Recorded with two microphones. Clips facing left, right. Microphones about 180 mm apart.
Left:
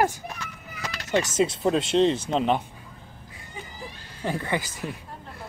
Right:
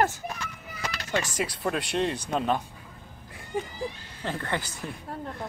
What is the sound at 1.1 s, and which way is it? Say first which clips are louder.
Speech: left 7 dB; 20° left (ahead or behind).